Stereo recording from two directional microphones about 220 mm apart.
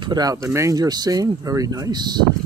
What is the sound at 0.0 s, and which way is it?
Speech, 20° right (ahead or behind).